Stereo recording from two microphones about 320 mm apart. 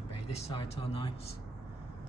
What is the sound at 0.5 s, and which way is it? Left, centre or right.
Speech, centre.